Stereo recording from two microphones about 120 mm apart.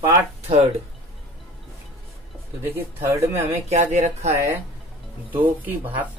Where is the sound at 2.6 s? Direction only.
20° right (ahead or behind).